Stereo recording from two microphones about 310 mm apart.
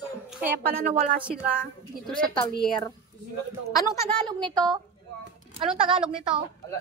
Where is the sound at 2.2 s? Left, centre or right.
Centre.